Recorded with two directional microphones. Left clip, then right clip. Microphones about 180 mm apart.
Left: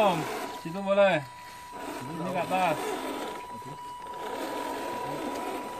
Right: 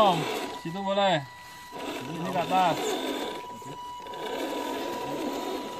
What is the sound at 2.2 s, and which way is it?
Speech, 50° right (ahead or behind).